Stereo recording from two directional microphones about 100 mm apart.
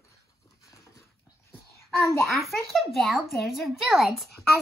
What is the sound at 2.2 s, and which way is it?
Speech, centre (ahead or behind).